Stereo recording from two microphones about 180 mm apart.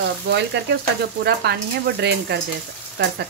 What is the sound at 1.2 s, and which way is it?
Speech, 65° right (ahead or behind).